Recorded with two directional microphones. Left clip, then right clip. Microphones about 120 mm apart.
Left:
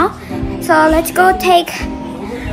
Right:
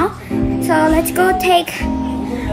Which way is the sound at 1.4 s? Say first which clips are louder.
Left 2 dB; 25° left (ahead or behind).